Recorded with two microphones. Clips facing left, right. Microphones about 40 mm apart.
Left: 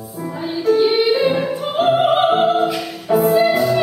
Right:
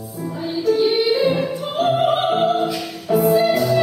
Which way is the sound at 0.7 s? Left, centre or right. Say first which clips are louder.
Left 3 dB; centre.